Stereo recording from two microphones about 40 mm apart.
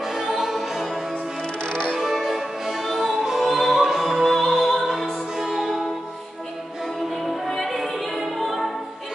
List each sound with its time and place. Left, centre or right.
0.3 s music: centre
1.6 s music: left
2.0 s music: centre
4.2 s opera: centre
5.3 s music: centre
7.1 s music: centre